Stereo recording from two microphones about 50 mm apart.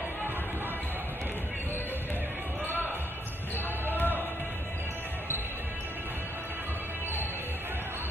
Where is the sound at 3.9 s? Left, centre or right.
Left.